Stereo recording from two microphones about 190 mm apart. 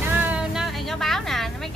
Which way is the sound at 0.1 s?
10° right (ahead or behind).